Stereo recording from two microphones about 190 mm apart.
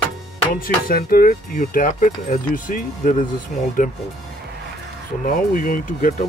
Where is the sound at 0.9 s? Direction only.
50° left (ahead or behind).